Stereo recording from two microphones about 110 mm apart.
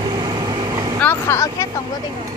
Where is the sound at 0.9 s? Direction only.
20° left (ahead or behind).